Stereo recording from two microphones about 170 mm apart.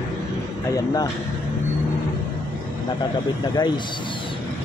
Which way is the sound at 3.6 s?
25° left (ahead or behind).